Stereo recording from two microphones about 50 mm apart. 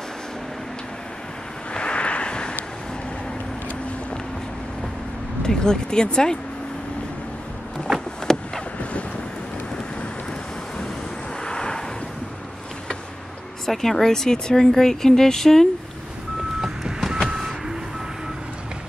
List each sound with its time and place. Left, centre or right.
1.7 s a sound: left
5.4 s speech: centre
8.3 s boat: centre
11.4 s vehicle: centre
13.7 s speech: centre
16.6 s vehicle: centre